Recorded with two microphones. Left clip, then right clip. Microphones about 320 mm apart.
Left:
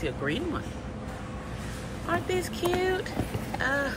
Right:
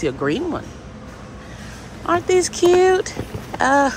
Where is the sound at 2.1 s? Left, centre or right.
Centre.